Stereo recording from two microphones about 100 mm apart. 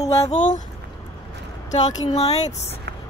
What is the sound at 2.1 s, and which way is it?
Speech, 90° left.